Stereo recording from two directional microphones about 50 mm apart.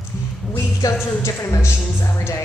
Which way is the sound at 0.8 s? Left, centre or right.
Left.